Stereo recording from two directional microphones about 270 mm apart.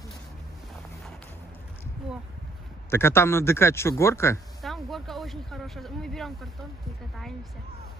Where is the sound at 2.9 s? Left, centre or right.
Centre.